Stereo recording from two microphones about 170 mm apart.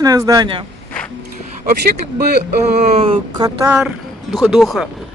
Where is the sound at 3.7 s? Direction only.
5° right (ahead or behind).